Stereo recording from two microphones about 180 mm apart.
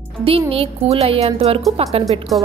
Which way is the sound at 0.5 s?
35° right (ahead or behind).